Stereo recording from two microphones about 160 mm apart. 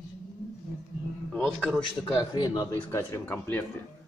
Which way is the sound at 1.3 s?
5° left (ahead or behind).